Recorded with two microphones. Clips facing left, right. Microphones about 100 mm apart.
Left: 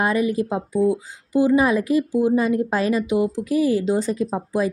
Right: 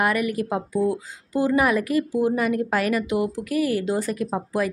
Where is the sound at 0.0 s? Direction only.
25° left (ahead or behind).